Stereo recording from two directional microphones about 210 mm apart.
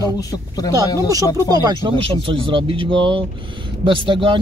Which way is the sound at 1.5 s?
20° right (ahead or behind).